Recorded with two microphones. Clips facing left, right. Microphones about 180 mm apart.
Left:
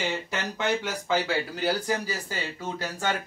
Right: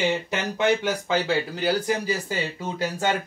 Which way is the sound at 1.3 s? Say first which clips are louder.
Right 3 dB; 20° right (ahead or behind).